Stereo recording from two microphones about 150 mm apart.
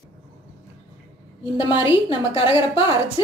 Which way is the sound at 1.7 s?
35° left (ahead or behind).